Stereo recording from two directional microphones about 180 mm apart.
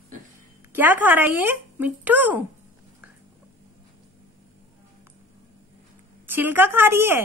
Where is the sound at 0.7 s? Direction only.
10° right (ahead or behind).